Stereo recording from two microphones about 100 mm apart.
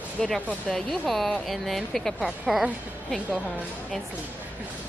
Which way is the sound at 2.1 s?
10° right (ahead or behind).